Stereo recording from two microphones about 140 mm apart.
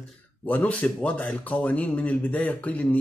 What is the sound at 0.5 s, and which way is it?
Speech, 10° left (ahead or behind).